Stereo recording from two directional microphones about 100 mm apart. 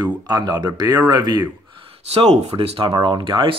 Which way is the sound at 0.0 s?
40° right (ahead or behind).